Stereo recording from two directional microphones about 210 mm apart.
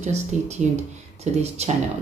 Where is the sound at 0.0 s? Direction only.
30° right (ahead or behind).